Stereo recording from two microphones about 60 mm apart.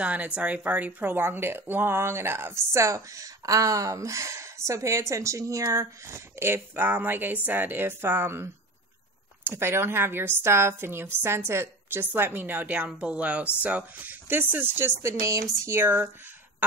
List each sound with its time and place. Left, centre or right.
0.0 s a woman's voice: right
14.2 s a woman's voice: right
15.1 s a sound: right
15.8 s a woman's voice: right